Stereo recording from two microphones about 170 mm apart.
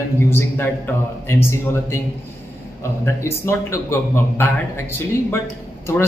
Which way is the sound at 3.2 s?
15° left (ahead or behind).